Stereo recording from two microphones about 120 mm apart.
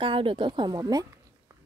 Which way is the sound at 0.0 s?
45° right (ahead or behind).